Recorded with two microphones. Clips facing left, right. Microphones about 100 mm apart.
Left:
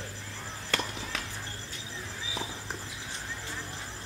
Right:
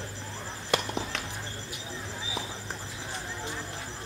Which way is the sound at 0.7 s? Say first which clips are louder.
Right 4 dB; 15° right (ahead or behind).